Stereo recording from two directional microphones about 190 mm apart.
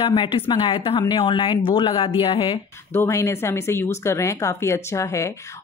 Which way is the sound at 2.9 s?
15° left (ahead or behind).